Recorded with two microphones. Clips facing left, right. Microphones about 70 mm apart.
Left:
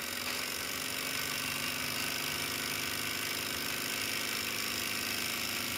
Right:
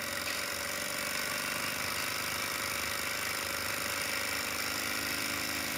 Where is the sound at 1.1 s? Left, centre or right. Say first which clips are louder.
Right 3 dB; right.